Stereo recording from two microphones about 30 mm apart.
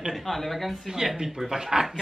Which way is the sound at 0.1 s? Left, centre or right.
Centre.